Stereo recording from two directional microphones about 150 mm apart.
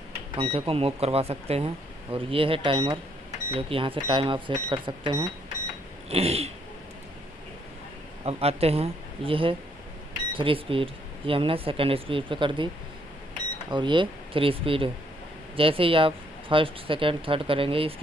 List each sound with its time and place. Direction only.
0.4 s speech: 40° right (ahead or behind)
6.0 s throat clearing: 40° right (ahead or behind)
8.3 s speech: 40° right (ahead or behind)
13.7 s speech: 30° right (ahead or behind)